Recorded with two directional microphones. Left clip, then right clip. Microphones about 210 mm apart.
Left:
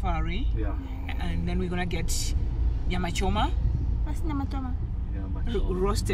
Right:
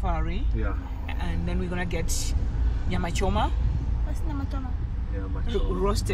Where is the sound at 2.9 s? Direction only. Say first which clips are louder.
Right 1 dB; 25° right (ahead or behind).